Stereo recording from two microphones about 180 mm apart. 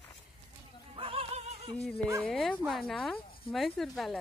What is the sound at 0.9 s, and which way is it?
Music, 30° right (ahead or behind).